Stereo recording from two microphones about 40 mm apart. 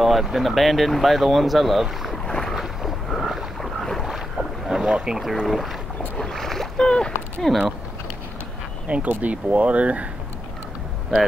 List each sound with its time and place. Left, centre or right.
0.0 s speech: centre
2.2 s boat: centre
2.5 s boat: centre
4.1 s boat: centre
4.8 s speech: right
5.5 s speech: centre
6.1 s boat: centre
6.8 s speech: centre
7.5 s speech: centre
8.8 s speech: right